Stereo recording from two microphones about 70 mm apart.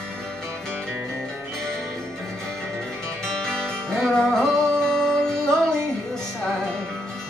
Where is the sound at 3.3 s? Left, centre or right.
Centre.